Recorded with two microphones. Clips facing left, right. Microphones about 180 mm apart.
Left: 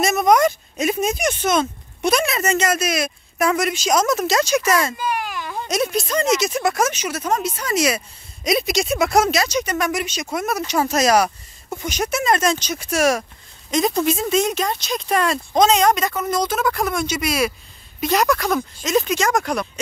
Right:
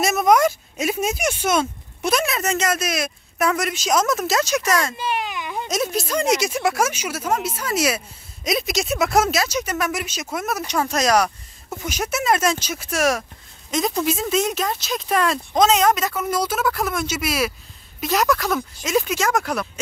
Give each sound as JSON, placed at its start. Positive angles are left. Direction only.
{"t": 0.0, "sound": "speech", "side_deg": -5}
{"t": 4.9, "sound": "baby cry", "side_deg": -25}
{"t": 5.7, "sound": "speech", "side_deg": -5}